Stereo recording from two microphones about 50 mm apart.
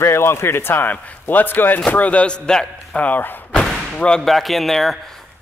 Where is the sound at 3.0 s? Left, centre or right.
Left.